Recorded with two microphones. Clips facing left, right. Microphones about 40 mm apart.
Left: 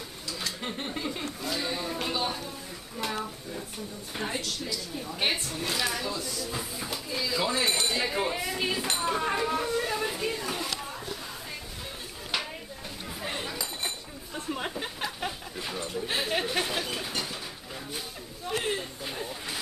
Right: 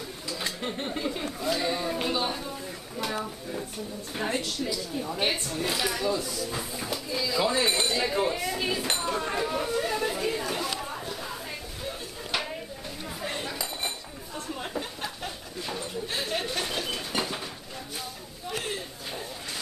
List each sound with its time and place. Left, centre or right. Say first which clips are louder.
0.6 s speech: right 2 dB; centre
4.2 s speech: right 3 dB; centre
5.2 s speech: even; centre
10.7 s chatter: right 2 dB; centre
11.8 s a sound: right 4 dB; centre
15.0 s a sound: left 2 dB; centre
16.1 s chatter: left 2 dB; centre
17.1 s bird: right 4 dB; right
18.5 s a sound: left 3 dB; centre